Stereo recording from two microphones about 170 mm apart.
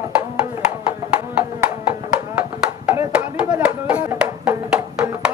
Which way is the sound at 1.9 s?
10° right (ahead or behind).